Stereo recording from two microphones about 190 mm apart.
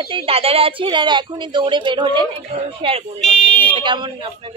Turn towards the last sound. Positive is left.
turn(degrees=-25)  # may be behind; listen again after turning